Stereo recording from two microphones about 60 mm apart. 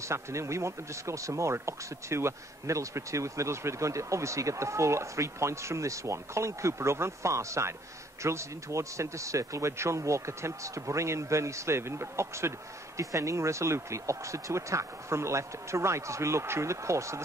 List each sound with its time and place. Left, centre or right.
0.0 s speech: right